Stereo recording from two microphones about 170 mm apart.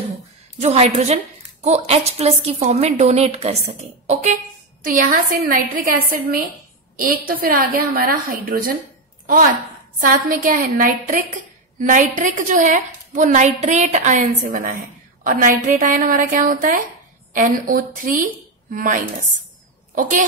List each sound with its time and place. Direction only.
0.6 s a woman's voice: 40° right (ahead or behind)
4.8 s a woman's voice: 55° right (ahead or behind)